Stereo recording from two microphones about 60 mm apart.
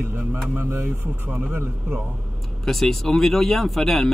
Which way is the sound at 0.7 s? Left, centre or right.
Right.